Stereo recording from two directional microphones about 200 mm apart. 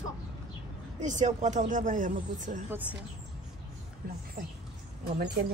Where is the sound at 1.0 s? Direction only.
40° right (ahead or behind).